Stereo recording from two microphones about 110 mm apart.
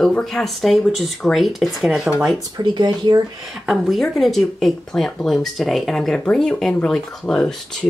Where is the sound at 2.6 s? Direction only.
40° right (ahead or behind).